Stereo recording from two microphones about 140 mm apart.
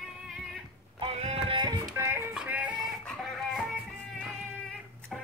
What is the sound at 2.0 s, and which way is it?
Music, 20° right (ahead or behind).